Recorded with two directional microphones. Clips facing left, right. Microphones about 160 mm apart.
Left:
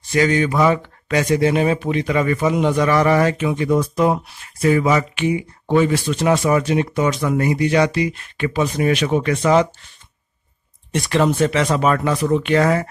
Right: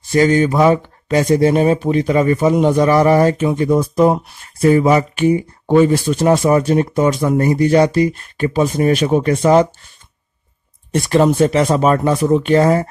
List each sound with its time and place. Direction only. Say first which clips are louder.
0.1 s a man's voice: right 4 dB; 40° right (ahead or behind)
0.6 s speech: right 4 dB; 25° right (ahead or behind)
1.1 s a man's voice: right 4 dB; 40° right (ahead or behind)
10.9 s a man's voice: right 4 dB; 40° right (ahead or behind)